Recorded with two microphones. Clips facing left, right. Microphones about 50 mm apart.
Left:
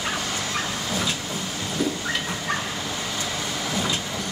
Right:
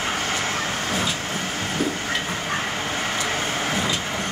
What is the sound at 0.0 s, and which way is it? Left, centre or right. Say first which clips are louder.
Vehicle: right 3 dB; right.